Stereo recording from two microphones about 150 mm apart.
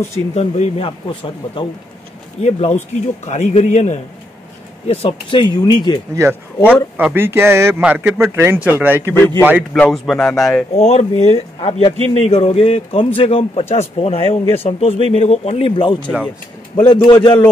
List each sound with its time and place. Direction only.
0.1 s speech: 45° left (ahead or behind)
2.4 s a man's voice: 50° left (ahead or behind); by 5.9 s 30° left (ahead or behind)
6.2 s speech: 20° right (ahead or behind)
6.7 s speech: 10° right (ahead or behind)
9.8 s a man's voice: centre (ahead or behind)
10.7 s speech: 45° left (ahead or behind); by 17.5 s 30° left (ahead or behind)